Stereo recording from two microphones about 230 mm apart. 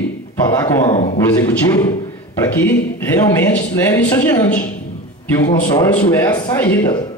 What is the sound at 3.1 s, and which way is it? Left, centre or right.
A man's voice, centre.